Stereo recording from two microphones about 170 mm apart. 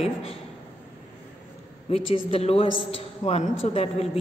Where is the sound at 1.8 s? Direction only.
35° left (ahead or behind).